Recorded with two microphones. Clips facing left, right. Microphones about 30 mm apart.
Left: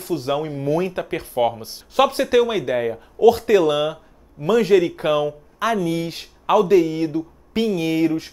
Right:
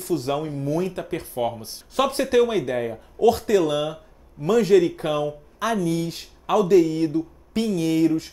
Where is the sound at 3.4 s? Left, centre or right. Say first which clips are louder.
Left 4 dB; left.